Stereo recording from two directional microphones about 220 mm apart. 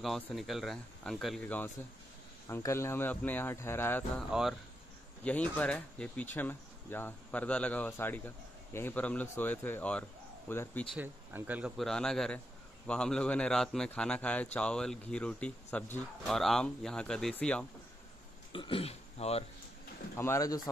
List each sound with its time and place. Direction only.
0.0 s a man's voice: centre (ahead or behind)
4.3 s a man's voice: centre (ahead or behind)
11.0 s a man's voice: 5° right (ahead or behind)
18.5 s speech: 25° left (ahead or behind)
20.2 s speech: 15° left (ahead or behind)